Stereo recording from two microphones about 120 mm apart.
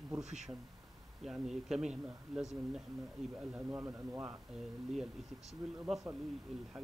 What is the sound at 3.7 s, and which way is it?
Speech, 20° right (ahead or behind).